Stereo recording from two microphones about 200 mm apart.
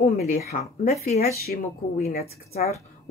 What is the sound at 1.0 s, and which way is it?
Speech, 45° left (ahead or behind).